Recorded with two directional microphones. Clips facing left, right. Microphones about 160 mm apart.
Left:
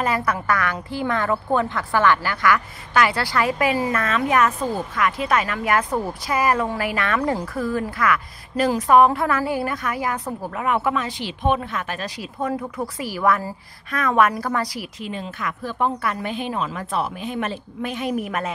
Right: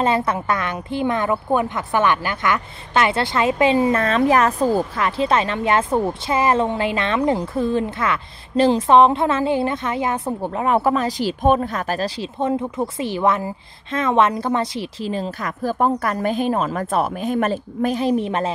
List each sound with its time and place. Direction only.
0.0 s a woman's voice: 25° right (ahead or behind)